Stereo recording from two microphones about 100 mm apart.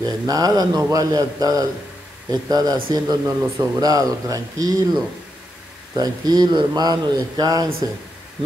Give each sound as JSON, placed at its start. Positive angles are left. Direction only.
{"t": 0.0, "sound": "a man's voice", "side_deg": -40}